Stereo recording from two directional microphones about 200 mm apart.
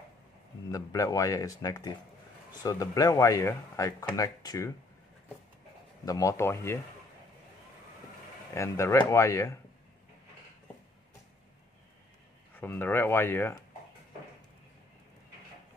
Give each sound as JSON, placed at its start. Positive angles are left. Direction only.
{"t": 0.7, "sound": "speech", "side_deg": 15}
{"t": 6.0, "sound": "speech", "side_deg": 15}
{"t": 8.5, "sound": "speech", "side_deg": 15}
{"t": 12.5, "sound": "speech", "side_deg": 10}